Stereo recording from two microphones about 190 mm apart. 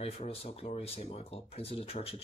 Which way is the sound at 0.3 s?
30° left (ahead or behind).